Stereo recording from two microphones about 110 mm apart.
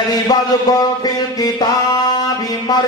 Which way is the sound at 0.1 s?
35° left (ahead or behind).